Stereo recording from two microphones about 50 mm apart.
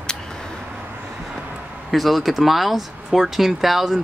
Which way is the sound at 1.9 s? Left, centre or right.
Centre.